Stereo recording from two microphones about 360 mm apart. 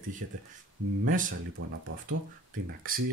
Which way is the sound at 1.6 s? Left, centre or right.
Right.